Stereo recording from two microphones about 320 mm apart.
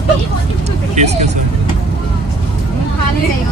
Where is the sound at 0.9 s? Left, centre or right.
Right.